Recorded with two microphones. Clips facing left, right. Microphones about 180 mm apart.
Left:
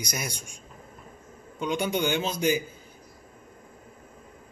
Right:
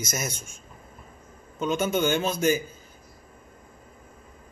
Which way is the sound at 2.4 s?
45° right (ahead or behind).